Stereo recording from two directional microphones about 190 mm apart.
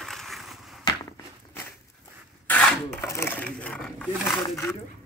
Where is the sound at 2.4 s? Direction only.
10° left (ahead or behind).